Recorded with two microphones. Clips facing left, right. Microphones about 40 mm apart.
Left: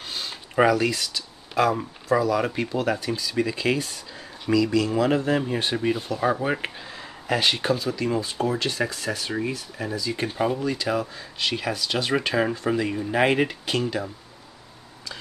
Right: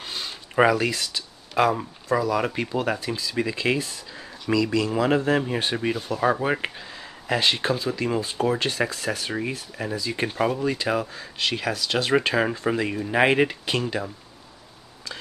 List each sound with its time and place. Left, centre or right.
0.0 s a sound: centre
1.6 s speech: centre
6.8 s speech: centre
10.6 s speech: right
11.1 s speech: centre
12.1 s speech: centre